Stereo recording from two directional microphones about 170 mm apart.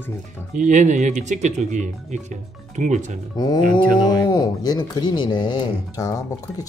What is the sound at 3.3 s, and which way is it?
Speech, 25° left (ahead or behind).